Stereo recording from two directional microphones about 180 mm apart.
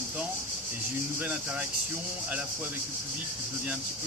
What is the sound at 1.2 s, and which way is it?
Speech, 5° right (ahead or behind).